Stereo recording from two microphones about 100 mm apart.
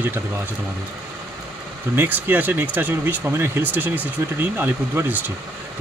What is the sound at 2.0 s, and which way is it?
Speech, 20° right (ahead or behind).